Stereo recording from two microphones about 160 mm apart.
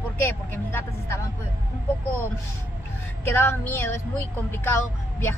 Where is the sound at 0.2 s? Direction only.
15° left (ahead or behind).